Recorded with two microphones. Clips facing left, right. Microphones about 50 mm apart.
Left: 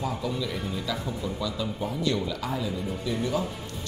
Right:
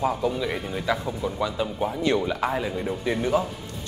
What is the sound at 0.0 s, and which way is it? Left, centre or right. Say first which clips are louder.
Speech: right 6 dB; right.